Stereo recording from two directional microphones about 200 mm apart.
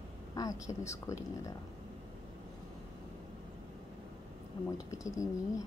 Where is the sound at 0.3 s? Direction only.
20° left (ahead or behind).